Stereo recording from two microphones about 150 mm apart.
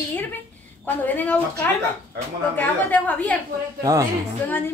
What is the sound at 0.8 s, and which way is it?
Speech, 10° left (ahead or behind).